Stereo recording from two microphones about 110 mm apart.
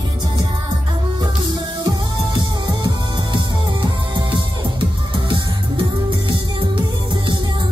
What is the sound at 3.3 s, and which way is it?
Music, 45° right (ahead or behind).